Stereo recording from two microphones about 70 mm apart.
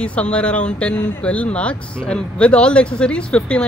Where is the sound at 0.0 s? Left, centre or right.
Centre.